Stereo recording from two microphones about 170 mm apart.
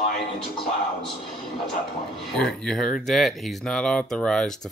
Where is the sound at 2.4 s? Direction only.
Centre (ahead or behind).